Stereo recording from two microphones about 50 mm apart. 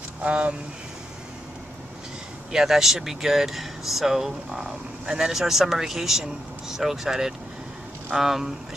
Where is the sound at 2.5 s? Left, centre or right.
Centre.